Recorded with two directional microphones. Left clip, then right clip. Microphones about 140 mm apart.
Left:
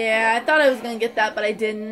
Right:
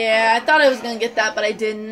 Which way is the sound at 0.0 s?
10° left (ahead or behind).